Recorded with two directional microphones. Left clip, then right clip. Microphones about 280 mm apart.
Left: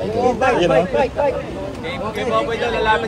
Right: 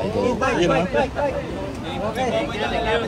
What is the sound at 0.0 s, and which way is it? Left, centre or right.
Speech, centre.